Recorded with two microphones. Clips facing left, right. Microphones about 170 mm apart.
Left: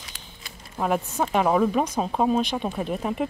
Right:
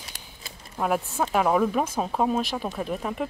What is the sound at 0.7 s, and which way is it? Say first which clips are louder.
Speech: left 1 dB; centre (ahead or behind).